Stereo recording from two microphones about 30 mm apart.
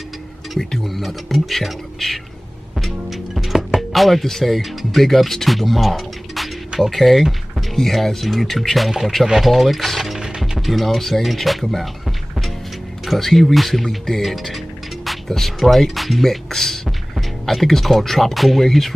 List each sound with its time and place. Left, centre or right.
0.6 s speech: centre
2.8 s music: centre
3.9 s speech: centre
13.0 s speech: centre